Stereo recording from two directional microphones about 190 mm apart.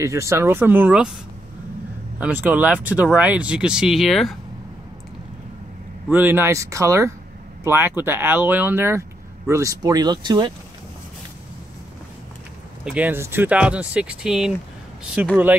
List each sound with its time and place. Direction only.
0.0 s speech: 15° right (ahead or behind)
2.1 s speech: 10° right (ahead or behind)
6.0 s speech: 10° right (ahead or behind)
12.8 s speech: 5° right (ahead or behind)